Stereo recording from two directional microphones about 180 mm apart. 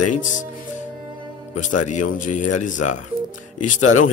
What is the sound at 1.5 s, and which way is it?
Speech, 45° left (ahead or behind).